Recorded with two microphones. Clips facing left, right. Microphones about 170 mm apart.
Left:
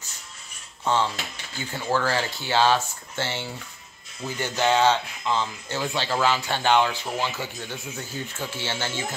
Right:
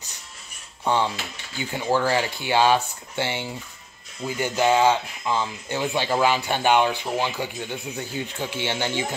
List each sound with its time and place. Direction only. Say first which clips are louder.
1.7 s speech: right 3 dB; 15° right (ahead or behind)